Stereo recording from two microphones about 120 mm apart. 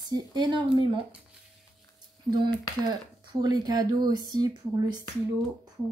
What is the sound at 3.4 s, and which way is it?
Speech, 35° right (ahead or behind).